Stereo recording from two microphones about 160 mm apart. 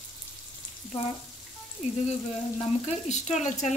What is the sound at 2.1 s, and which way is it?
Speech, 45° left (ahead or behind).